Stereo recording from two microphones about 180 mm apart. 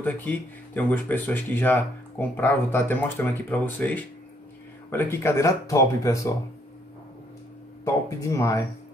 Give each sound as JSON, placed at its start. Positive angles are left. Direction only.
{"t": 0.0, "sound": "speech", "side_deg": 10}
{"t": 7.8, "sound": "speech", "side_deg": 15}